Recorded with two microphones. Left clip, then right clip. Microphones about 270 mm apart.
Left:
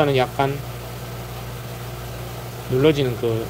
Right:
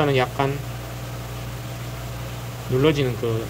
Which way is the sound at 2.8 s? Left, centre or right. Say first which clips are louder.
Left 3 dB; centre.